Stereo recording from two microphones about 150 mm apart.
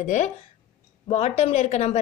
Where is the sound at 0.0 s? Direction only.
50° left (ahead or behind).